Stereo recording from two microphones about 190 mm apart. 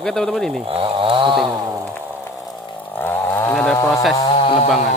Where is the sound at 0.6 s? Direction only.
30° right (ahead or behind).